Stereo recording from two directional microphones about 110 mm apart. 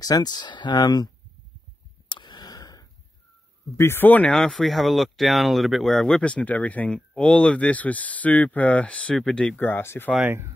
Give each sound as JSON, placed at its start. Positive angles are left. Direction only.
{"t": 0.0, "sound": "speech", "side_deg": 35}
{"t": 2.0, "sound": "a sound", "side_deg": 45}
{"t": 3.7, "sound": "speech", "side_deg": 20}
{"t": 9.6, "sound": "speech", "side_deg": 20}
{"t": 10.2, "sound": "speech", "side_deg": -20}